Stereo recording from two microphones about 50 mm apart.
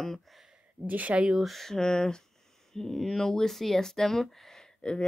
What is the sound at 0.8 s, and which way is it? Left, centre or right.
Speech, right.